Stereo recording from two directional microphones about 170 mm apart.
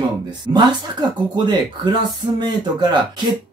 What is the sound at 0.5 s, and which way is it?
Speech, 25° right (ahead or behind).